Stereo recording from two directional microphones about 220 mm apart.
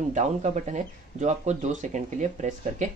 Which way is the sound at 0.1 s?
30° right (ahead or behind).